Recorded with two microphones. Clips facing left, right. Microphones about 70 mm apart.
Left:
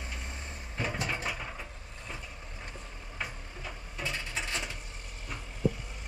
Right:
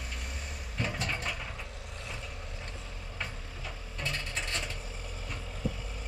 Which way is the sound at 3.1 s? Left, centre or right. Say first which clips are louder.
Left 2 dB; centre.